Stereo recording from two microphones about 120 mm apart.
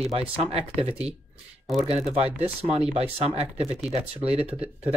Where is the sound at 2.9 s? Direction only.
60° right (ahead or behind).